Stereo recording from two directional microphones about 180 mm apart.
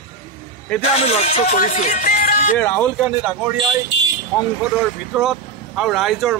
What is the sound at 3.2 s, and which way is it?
Speech, 5° right (ahead or behind).